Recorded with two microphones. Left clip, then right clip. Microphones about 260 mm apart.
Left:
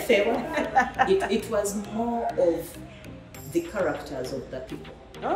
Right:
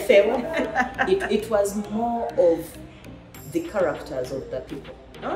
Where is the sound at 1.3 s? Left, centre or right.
Centre.